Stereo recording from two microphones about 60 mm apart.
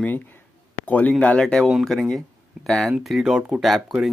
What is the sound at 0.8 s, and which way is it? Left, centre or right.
Speech, left.